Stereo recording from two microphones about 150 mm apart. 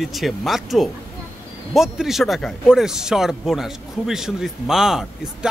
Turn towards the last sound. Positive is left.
turn(degrees=-5)  # may be behind; listen again after turning